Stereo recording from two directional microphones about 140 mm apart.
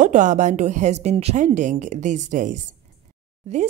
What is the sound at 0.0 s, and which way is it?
A woman's voice, 60° right (ahead or behind).